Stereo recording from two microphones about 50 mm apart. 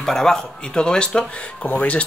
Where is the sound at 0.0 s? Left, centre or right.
Centre.